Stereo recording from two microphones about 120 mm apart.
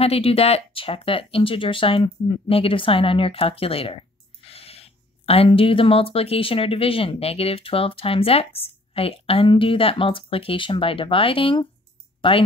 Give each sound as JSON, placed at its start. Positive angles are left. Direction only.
{"t": 0.0, "sound": "speech", "side_deg": 55}